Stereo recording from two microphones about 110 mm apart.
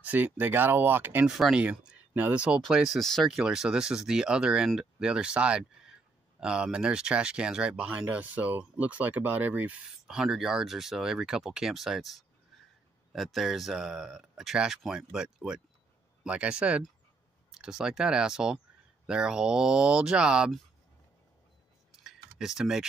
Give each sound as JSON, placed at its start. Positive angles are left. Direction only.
{"t": 0.0, "sound": "speech", "side_deg": -15}
{"t": 1.2, "sound": "speech", "side_deg": -5}
{"t": 22.0, "sound": "a sound", "side_deg": -5}